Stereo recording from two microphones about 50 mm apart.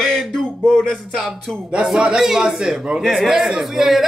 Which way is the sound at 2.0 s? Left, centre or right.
Centre.